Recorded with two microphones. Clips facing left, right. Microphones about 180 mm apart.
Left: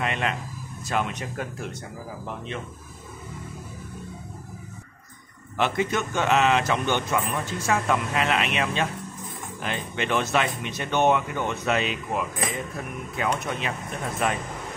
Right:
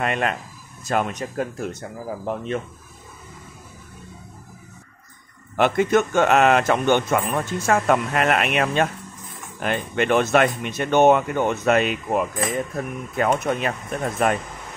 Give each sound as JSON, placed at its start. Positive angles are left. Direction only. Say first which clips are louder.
{"t": 0.0, "sound": "speech", "louder": "right 4 dB", "side_deg": -50}
{"t": 5.6, "sound": "speech", "louder": "right 7 dB", "side_deg": -50}